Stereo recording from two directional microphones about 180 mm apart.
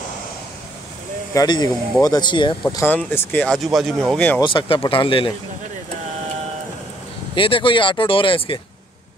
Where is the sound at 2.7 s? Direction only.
15° left (ahead or behind).